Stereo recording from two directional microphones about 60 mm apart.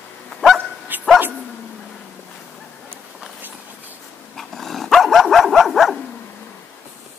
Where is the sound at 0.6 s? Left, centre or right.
Right.